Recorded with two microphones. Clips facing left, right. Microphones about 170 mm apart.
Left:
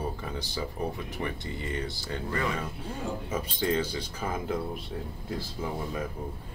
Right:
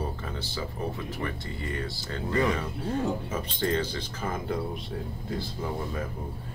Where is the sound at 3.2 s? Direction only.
10° left (ahead or behind).